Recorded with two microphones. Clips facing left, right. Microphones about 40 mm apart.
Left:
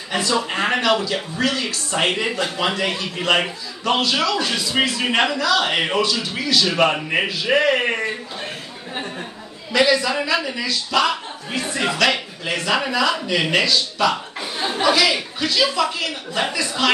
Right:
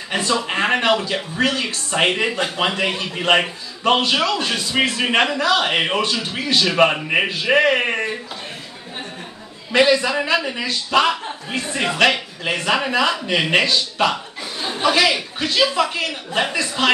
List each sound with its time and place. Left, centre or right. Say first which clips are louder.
0.1 s a man's voice: even; right
6.9 s a man's voice: right 1 dB; centre
7.5 s a man's voice: right 1 dB; right
9.7 s a man's voice: right 2 dB; right